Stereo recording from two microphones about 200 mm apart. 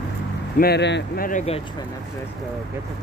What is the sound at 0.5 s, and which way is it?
Speech, 55° left (ahead or behind).